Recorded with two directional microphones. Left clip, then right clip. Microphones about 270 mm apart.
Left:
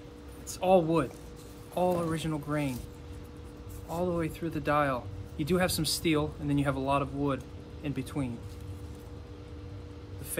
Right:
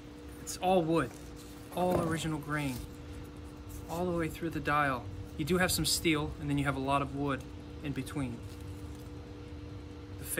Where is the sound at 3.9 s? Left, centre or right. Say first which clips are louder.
Left 2 dB; centre.